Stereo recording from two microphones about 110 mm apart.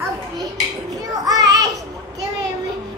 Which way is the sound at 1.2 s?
35° right (ahead or behind).